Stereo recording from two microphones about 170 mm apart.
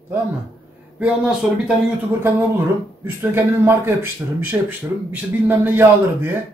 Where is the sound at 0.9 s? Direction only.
5° right (ahead or behind).